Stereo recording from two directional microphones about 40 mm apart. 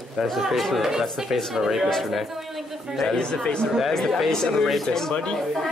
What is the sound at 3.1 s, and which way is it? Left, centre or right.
Speech, centre.